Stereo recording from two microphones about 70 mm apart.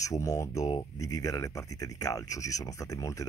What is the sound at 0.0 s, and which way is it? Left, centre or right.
Speech, left.